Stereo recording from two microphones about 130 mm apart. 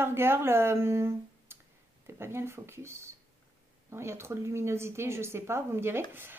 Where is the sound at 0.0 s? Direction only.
20° right (ahead or behind).